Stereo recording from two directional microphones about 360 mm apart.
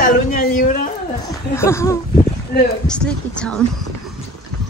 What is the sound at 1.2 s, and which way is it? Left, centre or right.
Speech, centre.